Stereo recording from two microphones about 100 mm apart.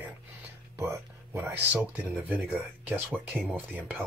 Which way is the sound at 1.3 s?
20° right (ahead or behind).